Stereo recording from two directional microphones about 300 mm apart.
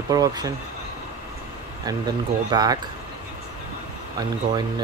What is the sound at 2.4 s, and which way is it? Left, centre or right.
Speech, centre.